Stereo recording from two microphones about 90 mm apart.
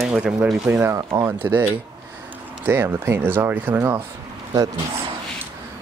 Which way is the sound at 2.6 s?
25° right (ahead or behind).